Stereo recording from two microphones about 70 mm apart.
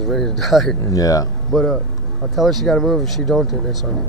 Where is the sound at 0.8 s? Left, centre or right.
Left.